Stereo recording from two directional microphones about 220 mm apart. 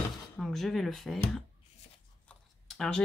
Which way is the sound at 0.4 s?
Centre (ahead or behind).